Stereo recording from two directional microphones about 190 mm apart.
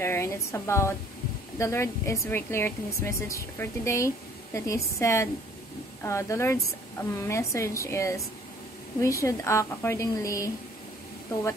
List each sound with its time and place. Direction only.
0.0 s speech: 15° left (ahead or behind)